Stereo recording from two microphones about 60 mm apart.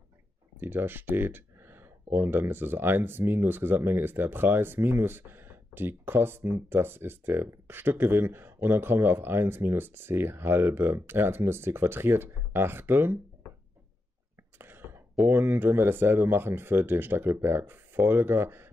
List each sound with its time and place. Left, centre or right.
0.6 s speech: right
14.6 s a sound: right
15.3 s speech: right